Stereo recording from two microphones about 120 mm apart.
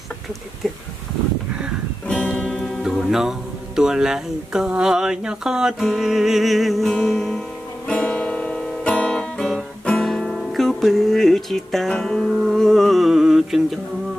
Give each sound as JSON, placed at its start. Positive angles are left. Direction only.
{"t": 2.0, "sound": "music", "side_deg": 10}